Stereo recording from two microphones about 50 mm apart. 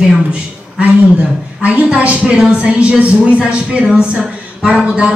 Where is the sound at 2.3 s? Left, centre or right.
Centre.